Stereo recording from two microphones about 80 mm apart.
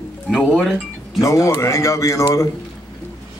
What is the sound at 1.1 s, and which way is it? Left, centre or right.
A man's voice, left.